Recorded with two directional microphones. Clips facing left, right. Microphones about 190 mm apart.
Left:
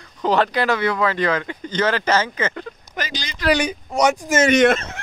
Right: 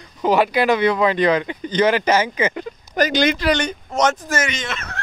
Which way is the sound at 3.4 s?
5° left (ahead or behind).